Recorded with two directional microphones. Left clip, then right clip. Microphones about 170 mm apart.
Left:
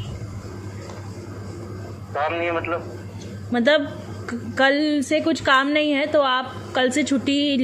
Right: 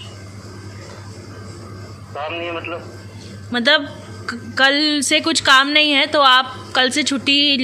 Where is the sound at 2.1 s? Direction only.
Centre (ahead or behind).